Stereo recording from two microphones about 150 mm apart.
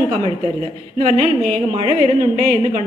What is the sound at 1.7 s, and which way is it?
A woman's voice, 45° right (ahead or behind).